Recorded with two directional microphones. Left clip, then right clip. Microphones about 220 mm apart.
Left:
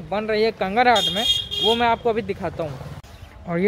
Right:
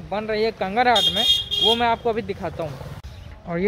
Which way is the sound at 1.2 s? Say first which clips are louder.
Right 2 dB; 50° right (ahead or behind).